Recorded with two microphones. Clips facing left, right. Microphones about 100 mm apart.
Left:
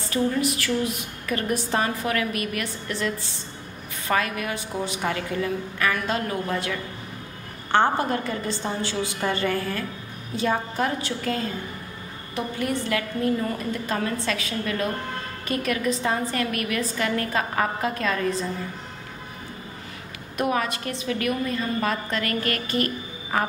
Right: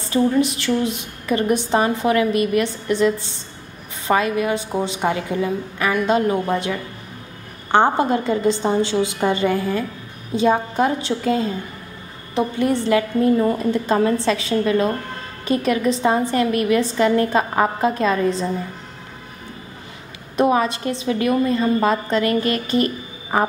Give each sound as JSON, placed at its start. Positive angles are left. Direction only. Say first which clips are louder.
{"t": 0.1, "sound": "a woman's voice", "louder": "right 6 dB", "side_deg": -20}
{"t": 20.3, "sound": "a woman's voice", "louder": "right 7 dB", "side_deg": -25}